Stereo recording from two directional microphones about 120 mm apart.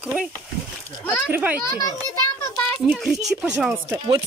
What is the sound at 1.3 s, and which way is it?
Speech, 15° right (ahead or behind).